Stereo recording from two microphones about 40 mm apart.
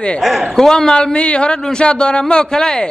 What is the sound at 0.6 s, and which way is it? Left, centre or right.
A man's voice, centre.